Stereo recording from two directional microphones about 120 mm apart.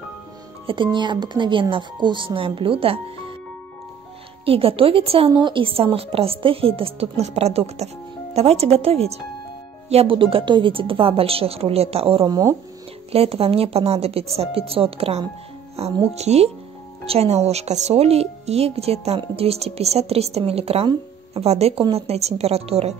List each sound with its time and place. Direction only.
0.8 s a woman's voice: 40° right (ahead or behind)
4.5 s a woman's voice: 50° right (ahead or behind)
5.3 s a woman's voice: 40° right (ahead or behind)
12.3 s speech: 30° right (ahead or behind)
13.1 s a woman's voice: 55° right (ahead or behind)